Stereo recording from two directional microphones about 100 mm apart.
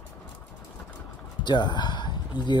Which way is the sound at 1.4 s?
45° left (ahead or behind).